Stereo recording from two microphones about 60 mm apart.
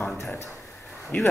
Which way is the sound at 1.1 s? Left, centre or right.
Left.